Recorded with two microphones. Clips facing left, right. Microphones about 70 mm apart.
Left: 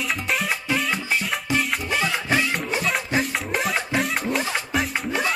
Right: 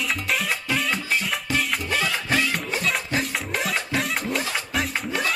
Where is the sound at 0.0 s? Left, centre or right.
Centre.